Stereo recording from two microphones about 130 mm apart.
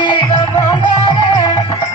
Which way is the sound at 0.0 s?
35° left (ahead or behind).